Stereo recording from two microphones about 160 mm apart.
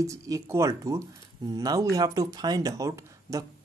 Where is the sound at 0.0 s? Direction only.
20° right (ahead or behind).